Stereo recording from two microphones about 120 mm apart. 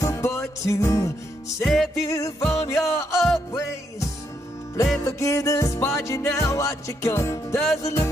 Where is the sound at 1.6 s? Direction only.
Centre (ahead or behind).